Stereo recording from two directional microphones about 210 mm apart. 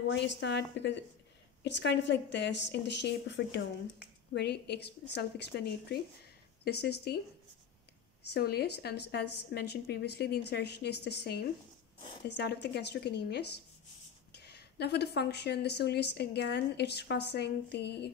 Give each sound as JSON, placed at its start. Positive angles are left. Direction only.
{"t": 0.1, "sound": "a woman's voice", "side_deg": 55}
{"t": 8.3, "sound": "a woman's voice", "side_deg": 50}